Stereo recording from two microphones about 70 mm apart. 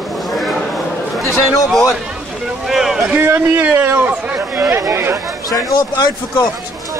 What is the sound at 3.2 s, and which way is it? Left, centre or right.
Speech, right.